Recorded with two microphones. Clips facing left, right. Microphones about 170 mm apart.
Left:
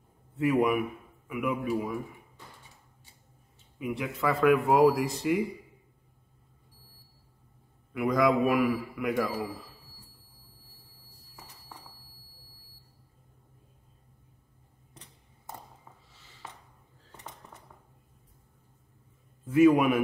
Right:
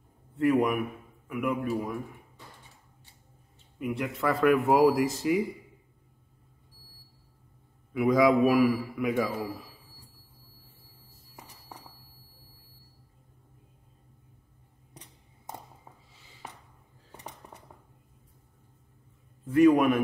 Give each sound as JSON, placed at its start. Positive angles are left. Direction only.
{"t": 0.4, "sound": "a man's voice", "side_deg": 0}
{"t": 3.7, "sound": "a man's voice", "side_deg": 0}
{"t": 7.9, "sound": "a man's voice", "side_deg": 0}
{"t": 17.4, "sound": "dishes", "side_deg": -15}
{"t": 19.4, "sound": "a man's voice", "side_deg": 5}